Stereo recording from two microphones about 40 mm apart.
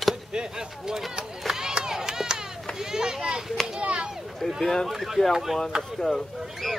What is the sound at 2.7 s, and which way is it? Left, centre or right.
Speech, centre.